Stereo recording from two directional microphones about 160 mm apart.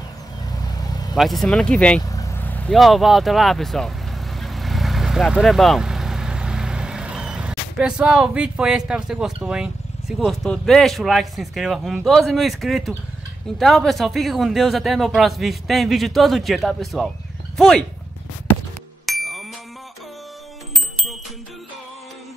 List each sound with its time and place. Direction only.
0.6 s vehicle: 25° left (ahead or behind)
1.1 s speech: centre (ahead or behind)
2.0 s vehicle: 20° left (ahead or behind)
2.7 s speech: centre (ahead or behind)
19.0 s ding: centre (ahead or behind)